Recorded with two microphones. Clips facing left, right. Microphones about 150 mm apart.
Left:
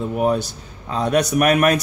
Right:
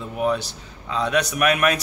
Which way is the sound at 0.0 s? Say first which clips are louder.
Left 4 dB; 45° left (ahead or behind).